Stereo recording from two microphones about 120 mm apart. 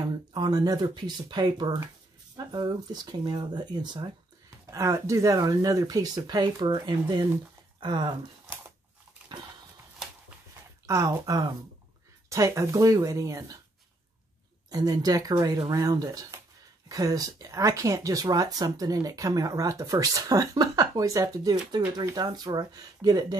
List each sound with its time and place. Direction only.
0.0 s speech: 35° right (ahead or behind)
4.6 s speech: 25° right (ahead or behind)
10.9 s speech: 30° right (ahead or behind)
14.7 s speech: 30° right (ahead or behind)